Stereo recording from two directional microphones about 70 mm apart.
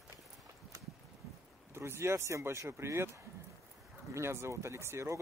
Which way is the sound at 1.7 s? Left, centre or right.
Right.